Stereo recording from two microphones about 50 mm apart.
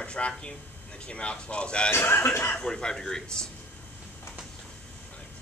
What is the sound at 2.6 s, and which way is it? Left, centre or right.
Speech, centre.